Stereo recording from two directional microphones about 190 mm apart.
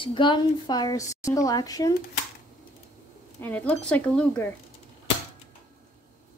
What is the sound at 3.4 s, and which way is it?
Speech, 10° left (ahead or behind).